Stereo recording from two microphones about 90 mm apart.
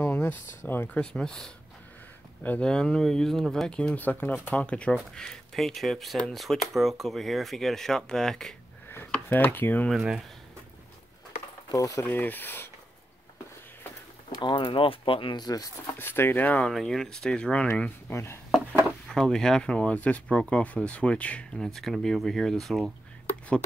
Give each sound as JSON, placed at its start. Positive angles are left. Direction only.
{"t": 0.0, "sound": "speech", "side_deg": 25}
{"t": 0.9, "sound": "speech", "side_deg": 10}
{"t": 9.1, "sound": "speech", "side_deg": 20}
{"t": 9.9, "sound": "speech", "side_deg": -10}
{"t": 11.7, "sound": "speech", "side_deg": 40}
{"t": 12.0, "sound": "speech", "side_deg": 20}
{"t": 14.3, "sound": "speech", "side_deg": 60}
{"t": 15.4, "sound": "rub", "side_deg": 45}
{"t": 15.9, "sound": "speech", "side_deg": 25}
{"t": 16.7, "sound": "speech", "side_deg": 5}
{"t": 18.1, "sound": "speech", "side_deg": 30}
{"t": 19.0, "sound": "speech", "side_deg": 5}